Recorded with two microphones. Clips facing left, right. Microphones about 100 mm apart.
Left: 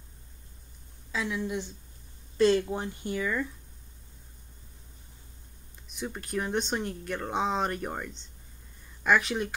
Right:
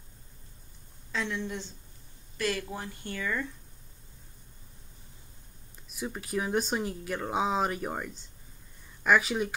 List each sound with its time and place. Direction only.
1.1 s speech: 5° left (ahead or behind)
2.3 s speech: 25° left (ahead or behind)
5.9 s speech: 5° right (ahead or behind)